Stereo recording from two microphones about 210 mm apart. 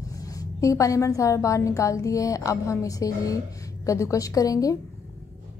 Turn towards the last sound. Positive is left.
turn(degrees=15)  # may be behind; listen again after turning